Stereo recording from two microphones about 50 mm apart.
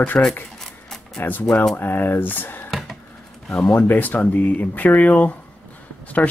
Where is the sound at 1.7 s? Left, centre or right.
Left.